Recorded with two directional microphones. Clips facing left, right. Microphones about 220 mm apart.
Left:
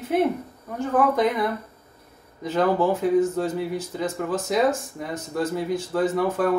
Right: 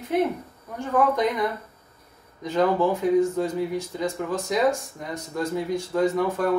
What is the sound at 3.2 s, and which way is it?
Speech, centre (ahead or behind).